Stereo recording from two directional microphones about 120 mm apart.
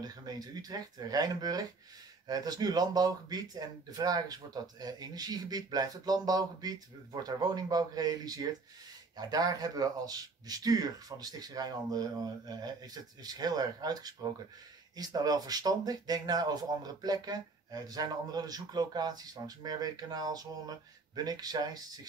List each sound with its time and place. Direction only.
0.0 s speech: 35° right (ahead or behind)